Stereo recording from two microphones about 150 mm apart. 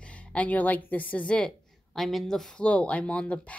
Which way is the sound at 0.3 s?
10° left (ahead or behind).